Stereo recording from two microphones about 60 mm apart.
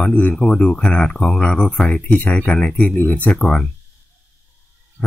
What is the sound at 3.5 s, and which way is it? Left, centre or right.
Speech, centre.